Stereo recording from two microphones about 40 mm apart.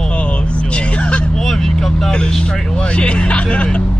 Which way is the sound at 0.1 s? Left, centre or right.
Left.